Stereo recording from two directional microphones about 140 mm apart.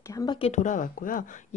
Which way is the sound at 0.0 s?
25° left (ahead or behind).